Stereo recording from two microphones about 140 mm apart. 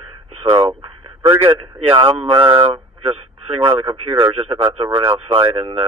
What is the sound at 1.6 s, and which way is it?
A man's voice, 40° right (ahead or behind).